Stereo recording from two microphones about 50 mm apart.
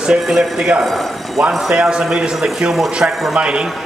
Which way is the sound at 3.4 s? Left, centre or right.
Right.